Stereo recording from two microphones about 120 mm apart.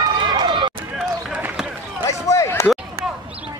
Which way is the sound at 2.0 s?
25° left (ahead or behind).